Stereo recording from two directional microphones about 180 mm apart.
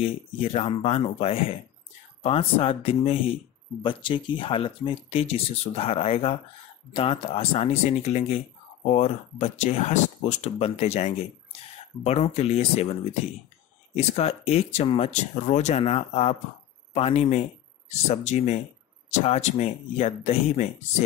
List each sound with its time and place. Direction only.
0.0 s speech: 35° left (ahead or behind)
13.9 s speech: 35° left (ahead or behind)